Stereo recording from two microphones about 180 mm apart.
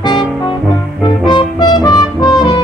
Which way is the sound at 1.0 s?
25° left (ahead or behind).